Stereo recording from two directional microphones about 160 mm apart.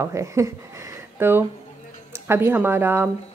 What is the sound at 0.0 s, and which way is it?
Speech, 20° right (ahead or behind).